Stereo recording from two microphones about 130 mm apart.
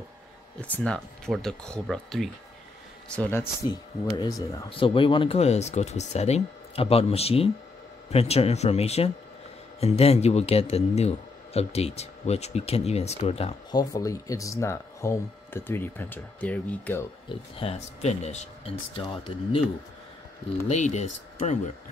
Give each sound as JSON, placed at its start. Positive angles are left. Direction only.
{"t": 0.6, "sound": "speech", "side_deg": 10}
{"t": 4.2, "sound": "speech", "side_deg": 25}
{"t": 4.6, "sound": "a man's voice", "side_deg": 40}
{"t": 13.7, "sound": "speech", "side_deg": 30}
{"t": 17.6, "sound": "a man's voice", "side_deg": 55}
{"t": 20.6, "sound": "speech", "side_deg": 60}